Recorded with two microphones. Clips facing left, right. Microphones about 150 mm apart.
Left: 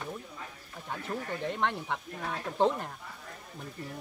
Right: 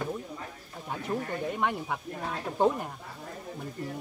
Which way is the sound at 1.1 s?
15° right (ahead or behind).